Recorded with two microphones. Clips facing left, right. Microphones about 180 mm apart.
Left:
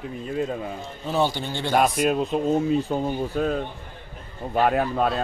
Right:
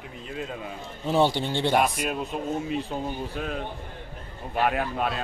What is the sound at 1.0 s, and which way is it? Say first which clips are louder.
Speech: right 2 dB; 25° right (ahead or behind).